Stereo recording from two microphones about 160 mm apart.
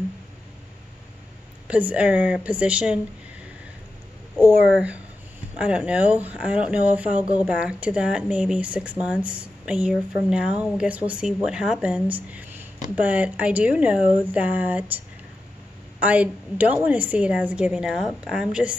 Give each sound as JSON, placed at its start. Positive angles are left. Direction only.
{"t": 1.7, "sound": "speech", "side_deg": -10}
{"t": 4.4, "sound": "speech", "side_deg": -10}
{"t": 16.0, "sound": "speech", "side_deg": -10}